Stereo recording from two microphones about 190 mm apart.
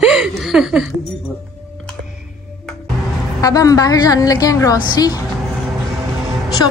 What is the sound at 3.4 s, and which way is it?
A woman's voice, 20° left (ahead or behind).